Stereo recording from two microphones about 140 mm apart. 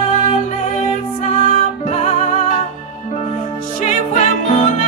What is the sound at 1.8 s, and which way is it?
Music, 55° left (ahead or behind).